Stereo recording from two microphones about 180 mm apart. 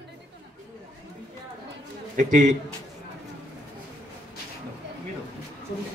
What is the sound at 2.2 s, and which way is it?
Speech, 40° right (ahead or behind).